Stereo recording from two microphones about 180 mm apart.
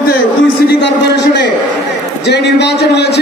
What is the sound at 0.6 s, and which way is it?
A man's voice, 70° left (ahead or behind).